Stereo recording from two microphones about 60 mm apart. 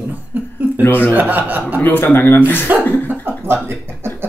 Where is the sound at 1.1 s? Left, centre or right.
Right.